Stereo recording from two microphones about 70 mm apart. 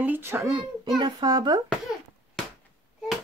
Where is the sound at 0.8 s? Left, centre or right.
Right.